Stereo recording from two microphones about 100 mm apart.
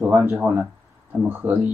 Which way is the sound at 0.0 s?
20° right (ahead or behind).